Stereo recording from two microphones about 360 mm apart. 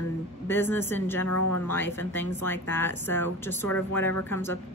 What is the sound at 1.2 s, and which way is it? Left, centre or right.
Speech, left.